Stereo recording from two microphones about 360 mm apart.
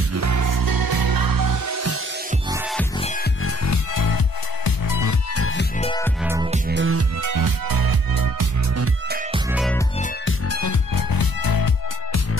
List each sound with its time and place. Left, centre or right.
0.1 s music: right
2.5 s music: centre
3.4 s music: left
5.3 s music: left
5.8 s music: centre
6.2 s music: centre
6.7 s music: right
7.2 s music: right
9.3 s music: centre
10.2 s music: left